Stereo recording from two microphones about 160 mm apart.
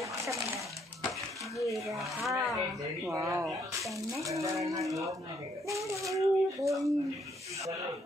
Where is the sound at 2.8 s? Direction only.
20° right (ahead or behind).